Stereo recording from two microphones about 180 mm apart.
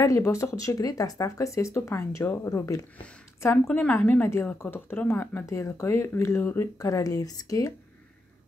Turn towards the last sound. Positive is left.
turn(degrees=20)  # may be behind; listen again after turning